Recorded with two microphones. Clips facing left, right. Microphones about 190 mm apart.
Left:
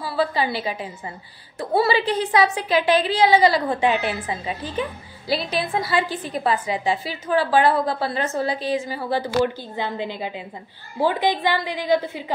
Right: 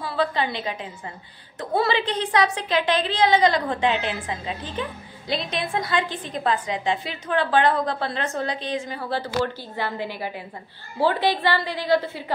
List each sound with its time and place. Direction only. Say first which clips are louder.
0.0 s a woman's voice: left 2 dB; 5° left (ahead or behind)